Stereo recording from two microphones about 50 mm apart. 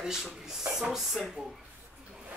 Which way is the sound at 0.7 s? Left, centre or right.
Centre.